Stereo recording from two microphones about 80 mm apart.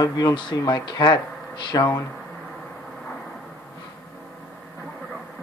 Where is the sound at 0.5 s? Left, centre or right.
Left.